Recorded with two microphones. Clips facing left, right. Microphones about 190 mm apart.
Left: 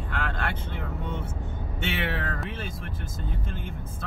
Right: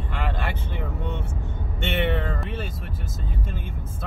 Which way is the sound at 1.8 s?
5° left (ahead or behind).